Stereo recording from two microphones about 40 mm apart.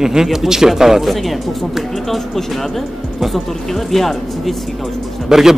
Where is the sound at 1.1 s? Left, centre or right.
Centre.